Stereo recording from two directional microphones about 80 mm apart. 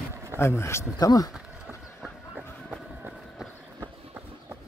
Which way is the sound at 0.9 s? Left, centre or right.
Left.